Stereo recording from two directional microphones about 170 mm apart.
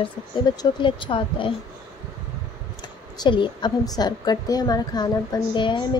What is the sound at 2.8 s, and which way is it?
A woman's voice, 25° left (ahead or behind).